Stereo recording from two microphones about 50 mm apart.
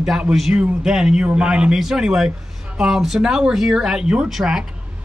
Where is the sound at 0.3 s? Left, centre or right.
Centre.